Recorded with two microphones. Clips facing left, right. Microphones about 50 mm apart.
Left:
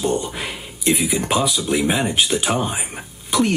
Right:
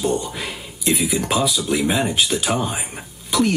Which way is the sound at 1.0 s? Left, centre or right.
Centre.